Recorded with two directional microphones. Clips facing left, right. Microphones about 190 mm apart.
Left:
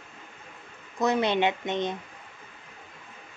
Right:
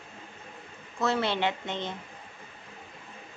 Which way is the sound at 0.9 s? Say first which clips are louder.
Left 4 dB; 15° left (ahead or behind).